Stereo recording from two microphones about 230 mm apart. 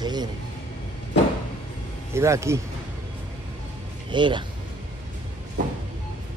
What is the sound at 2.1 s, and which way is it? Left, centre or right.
Speech, centre.